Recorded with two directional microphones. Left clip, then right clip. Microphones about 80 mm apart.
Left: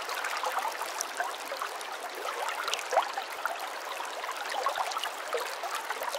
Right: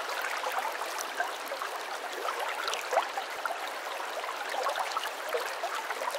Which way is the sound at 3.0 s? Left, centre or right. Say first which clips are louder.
Left 2 dB; left.